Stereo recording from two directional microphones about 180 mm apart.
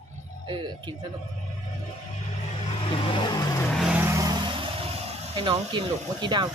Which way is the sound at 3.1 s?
25° left (ahead or behind).